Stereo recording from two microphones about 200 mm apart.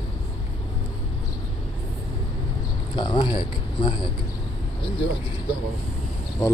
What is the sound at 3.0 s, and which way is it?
Speech, 25° left (ahead or behind).